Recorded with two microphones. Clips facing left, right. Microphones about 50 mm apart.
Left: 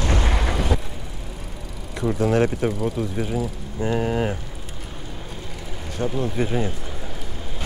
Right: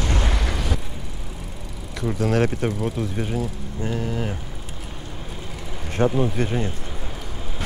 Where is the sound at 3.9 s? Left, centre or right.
Left.